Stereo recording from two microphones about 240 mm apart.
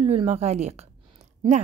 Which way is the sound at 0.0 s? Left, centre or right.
Right.